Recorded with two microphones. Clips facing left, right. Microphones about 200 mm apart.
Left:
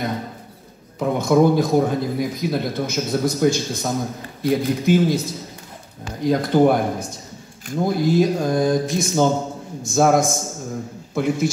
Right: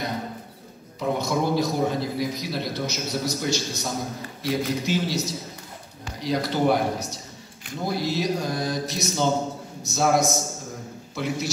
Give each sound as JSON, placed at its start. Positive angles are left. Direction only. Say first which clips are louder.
{"t": 0.9, "sound": "a man's voice", "louder": "left 8 dB", "side_deg": 50}